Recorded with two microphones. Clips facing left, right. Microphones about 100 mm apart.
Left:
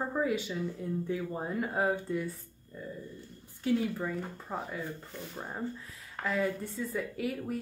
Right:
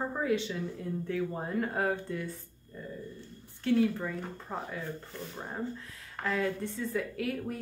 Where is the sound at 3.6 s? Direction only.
5° left (ahead or behind).